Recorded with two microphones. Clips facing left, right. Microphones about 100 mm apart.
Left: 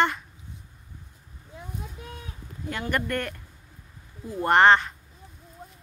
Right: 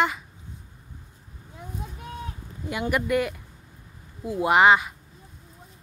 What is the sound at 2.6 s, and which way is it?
Speech, 10° right (ahead or behind).